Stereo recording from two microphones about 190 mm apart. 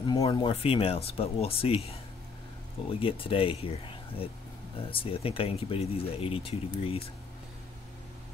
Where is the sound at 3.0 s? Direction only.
30° left (ahead or behind).